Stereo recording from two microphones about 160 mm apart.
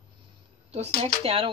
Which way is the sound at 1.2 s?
35° right (ahead or behind).